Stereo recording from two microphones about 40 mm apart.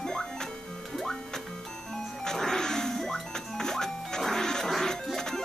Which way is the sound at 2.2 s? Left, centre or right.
Centre.